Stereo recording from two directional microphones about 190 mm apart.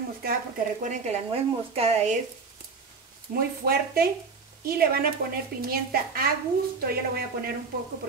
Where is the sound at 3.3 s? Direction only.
45° right (ahead or behind).